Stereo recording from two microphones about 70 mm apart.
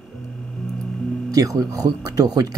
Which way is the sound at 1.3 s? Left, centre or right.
Right.